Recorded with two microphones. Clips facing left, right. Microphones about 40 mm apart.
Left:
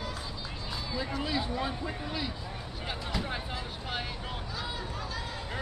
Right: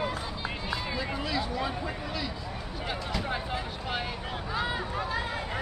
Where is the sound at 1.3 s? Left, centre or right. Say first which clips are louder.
Right 2 dB; centre.